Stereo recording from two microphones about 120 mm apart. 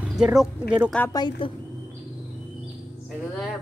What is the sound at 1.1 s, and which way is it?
Speech, 35° left (ahead or behind).